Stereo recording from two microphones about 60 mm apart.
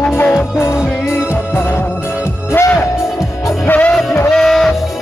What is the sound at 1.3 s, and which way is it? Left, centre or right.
Music, left.